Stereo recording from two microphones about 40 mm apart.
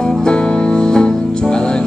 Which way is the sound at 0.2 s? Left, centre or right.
Centre.